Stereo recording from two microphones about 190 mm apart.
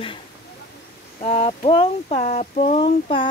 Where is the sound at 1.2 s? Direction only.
30° left (ahead or behind).